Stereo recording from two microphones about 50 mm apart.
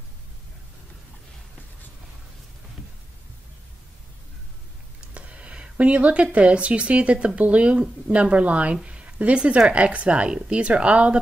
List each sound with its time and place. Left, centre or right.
5.1 s speech: right
8.8 s a sound: right
9.7 s speech: right